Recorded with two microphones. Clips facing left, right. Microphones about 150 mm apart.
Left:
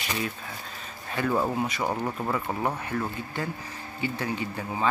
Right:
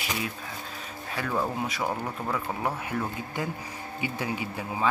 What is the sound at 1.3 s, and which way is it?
Speech, 10° left (ahead or behind).